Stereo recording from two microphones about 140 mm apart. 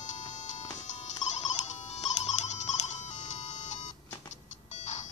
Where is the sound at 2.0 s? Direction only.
55° left (ahead or behind).